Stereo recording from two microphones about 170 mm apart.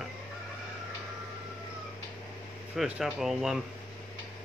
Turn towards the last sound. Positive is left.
turn(degrees=-5)  # may be behind; listen again after turning